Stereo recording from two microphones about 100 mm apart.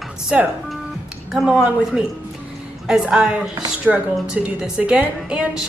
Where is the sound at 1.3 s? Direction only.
10° right (ahead or behind).